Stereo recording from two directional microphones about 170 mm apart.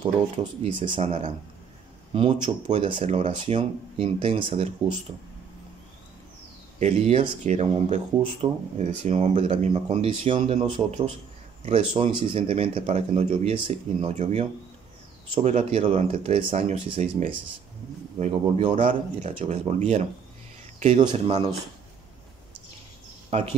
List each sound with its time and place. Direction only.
0.0 s speech: 30° right (ahead or behind)
2.4 s speech: 35° right (ahead or behind)
6.8 s speech: 35° right (ahead or behind)
21.1 s speech: 40° right (ahead or behind)
23.3 s speech: 35° right (ahead or behind)